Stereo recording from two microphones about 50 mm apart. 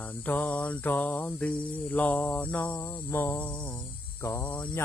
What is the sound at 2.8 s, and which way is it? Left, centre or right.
Cricket, left.